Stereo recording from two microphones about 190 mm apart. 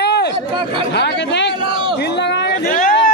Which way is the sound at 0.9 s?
65° left (ahead or behind).